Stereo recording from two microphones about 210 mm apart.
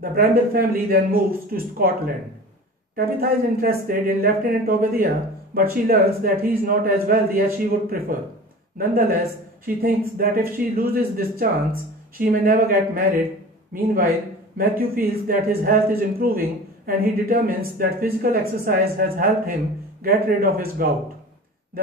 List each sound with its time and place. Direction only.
0.0 s speech: 45° right (ahead or behind)
3.0 s speech: 45° right (ahead or behind)
14.6 s speech: 45° right (ahead or behind)